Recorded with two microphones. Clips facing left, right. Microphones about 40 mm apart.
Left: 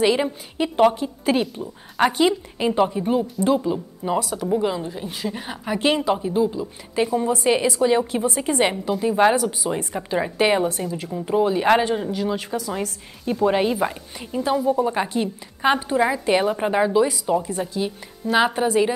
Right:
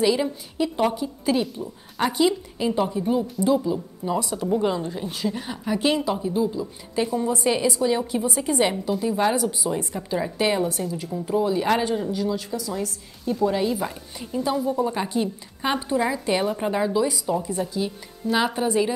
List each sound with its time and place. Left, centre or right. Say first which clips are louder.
0.0 s a woman's voice: left 2 dB; left
4.5 s speech: right 1 dB; centre
5.3 s a woman's voice: even; left
12.3 s a woman's voice: left 2 dB; left
13.7 s speech: left 5 dB; left